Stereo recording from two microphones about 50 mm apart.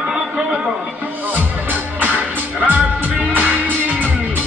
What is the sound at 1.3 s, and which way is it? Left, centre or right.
Music, right.